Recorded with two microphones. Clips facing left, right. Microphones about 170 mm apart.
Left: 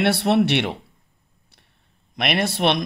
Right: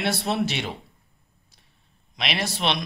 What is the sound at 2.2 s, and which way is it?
Speech, 55° left (ahead or behind).